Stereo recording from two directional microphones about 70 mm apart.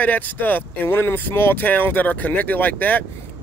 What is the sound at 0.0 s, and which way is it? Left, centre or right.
Speech, left.